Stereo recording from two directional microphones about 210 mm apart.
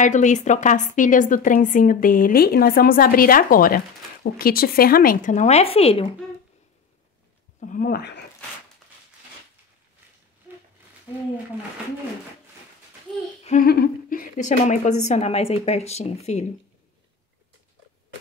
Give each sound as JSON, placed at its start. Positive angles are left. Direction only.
{"t": 0.0, "sound": "a woman's voice", "side_deg": 35}
{"t": 7.6, "sound": "speech", "side_deg": 40}
{"t": 13.4, "sound": "humming", "side_deg": 35}
{"t": 13.7, "sound": "a woman's voice", "side_deg": 45}